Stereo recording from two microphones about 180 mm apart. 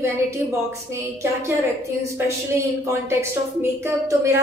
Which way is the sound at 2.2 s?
15° right (ahead or behind).